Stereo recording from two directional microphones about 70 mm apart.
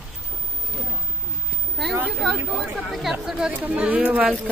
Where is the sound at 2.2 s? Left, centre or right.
Centre.